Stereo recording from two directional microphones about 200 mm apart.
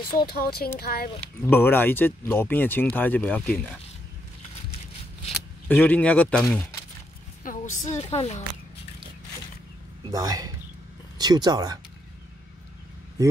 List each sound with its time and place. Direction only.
0.0 s speech: 25° left (ahead or behind)
0.3 s speech: 50° left (ahead or behind)
1.4 s speech: 10° left (ahead or behind)
5.7 s speech: 10° left (ahead or behind)
7.4 s a sound: 40° left (ahead or behind)
7.9 s speech: 30° left (ahead or behind)
10.1 s speech: 20° right (ahead or behind)